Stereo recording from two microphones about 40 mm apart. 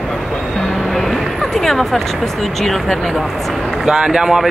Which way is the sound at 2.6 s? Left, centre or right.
Centre.